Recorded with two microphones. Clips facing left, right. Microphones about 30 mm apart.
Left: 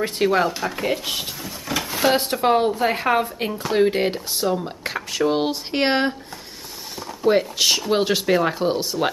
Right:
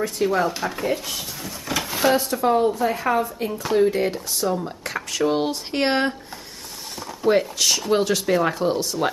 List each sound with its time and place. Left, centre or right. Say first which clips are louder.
0.0 s speech: left 2 dB; left
0.5 s speech: even; centre
0.7 s speech: left 1 dB; centre
1.4 s a sound: even; centre
2.1 s speech: left 1 dB; left
4.6 s speech: left 1 dB; centre
7.0 s a sound: left 1 dB; centre
7.5 s speech: left 1 dB; left